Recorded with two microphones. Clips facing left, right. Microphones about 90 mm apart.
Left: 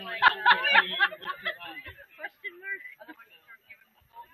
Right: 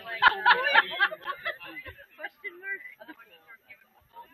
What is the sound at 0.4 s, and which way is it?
Speech, 5° right (ahead or behind).